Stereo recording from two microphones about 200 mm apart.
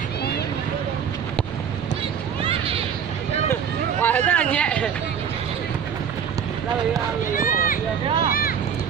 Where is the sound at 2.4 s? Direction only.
30° right (ahead or behind).